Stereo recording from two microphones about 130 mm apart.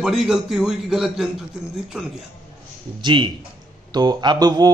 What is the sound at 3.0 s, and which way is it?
Speech, 40° right (ahead or behind).